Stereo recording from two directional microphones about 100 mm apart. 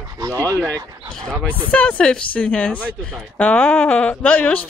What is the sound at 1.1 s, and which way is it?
Speech, 5° left (ahead or behind).